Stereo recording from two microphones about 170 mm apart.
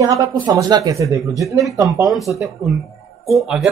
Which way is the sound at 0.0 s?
20° right (ahead or behind).